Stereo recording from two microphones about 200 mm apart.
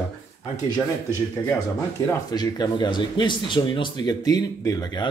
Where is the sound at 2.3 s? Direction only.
20° left (ahead or behind).